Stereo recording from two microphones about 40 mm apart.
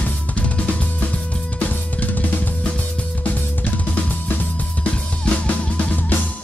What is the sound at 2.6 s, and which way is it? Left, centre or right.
Music, left.